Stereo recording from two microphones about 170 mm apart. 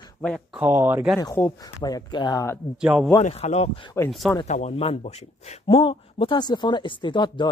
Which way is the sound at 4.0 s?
15° left (ahead or behind).